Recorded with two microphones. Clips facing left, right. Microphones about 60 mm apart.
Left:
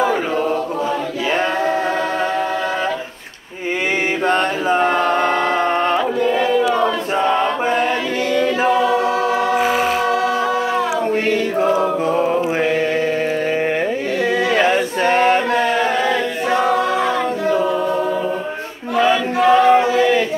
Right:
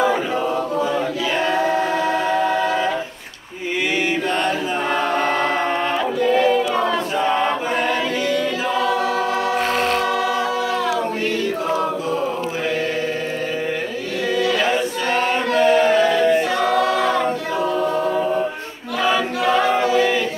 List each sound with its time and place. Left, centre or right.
14.6 s chant: left
19.7 s choir: left